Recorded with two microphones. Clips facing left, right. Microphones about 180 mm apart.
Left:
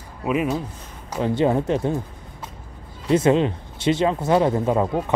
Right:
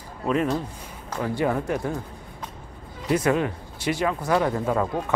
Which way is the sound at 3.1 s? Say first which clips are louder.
Left 5 dB; 25° left (ahead or behind).